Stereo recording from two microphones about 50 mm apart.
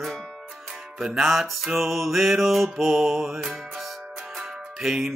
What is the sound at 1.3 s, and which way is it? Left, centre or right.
Music, centre.